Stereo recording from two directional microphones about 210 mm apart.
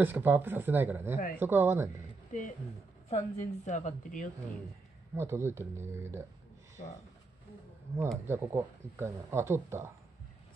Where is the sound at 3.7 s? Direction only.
35° left (ahead or behind).